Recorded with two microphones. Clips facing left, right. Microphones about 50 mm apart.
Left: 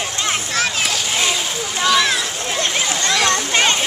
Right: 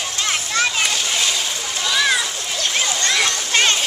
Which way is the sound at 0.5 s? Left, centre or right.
Centre.